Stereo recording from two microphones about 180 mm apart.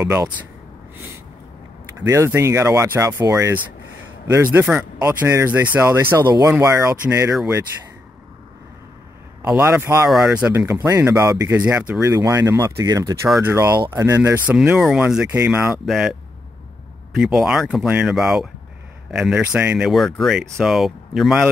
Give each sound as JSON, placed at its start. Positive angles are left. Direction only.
{"t": 0.0, "sound": "speech", "side_deg": -20}
{"t": 2.0, "sound": "speech", "side_deg": -15}
{"t": 9.5, "sound": "speech", "side_deg": -10}
{"t": 10.0, "sound": "speech", "side_deg": 0}
{"t": 19.8, "sound": "speech", "side_deg": 0}